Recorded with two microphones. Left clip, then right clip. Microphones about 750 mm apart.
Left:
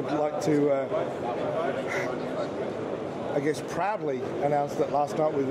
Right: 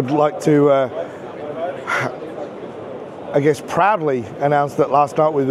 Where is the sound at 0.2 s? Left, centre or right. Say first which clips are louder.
Right 11 dB; right.